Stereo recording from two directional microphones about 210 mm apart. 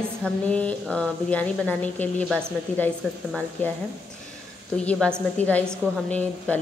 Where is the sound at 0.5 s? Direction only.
5° left (ahead or behind).